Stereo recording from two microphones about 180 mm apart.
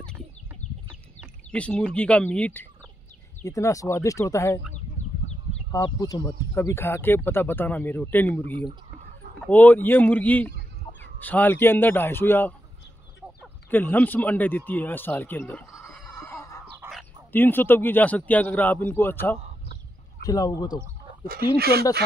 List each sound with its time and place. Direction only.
1.5 s speech: 5° left (ahead or behind)
5.7 s speech: 20° left (ahead or behind)
13.7 s speech: 10° left (ahead or behind)
16.0 s chicken: 15° left (ahead or behind)
16.8 s dog: 10° right (ahead or behind)
17.3 s speech: 10° left (ahead or behind)
21.5 s speech: 60° right (ahead or behind)